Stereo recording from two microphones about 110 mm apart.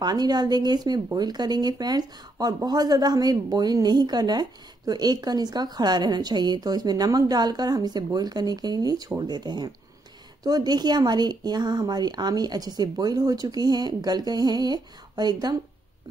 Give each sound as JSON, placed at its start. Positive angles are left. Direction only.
{"t": 0.0, "sound": "speech", "side_deg": -40}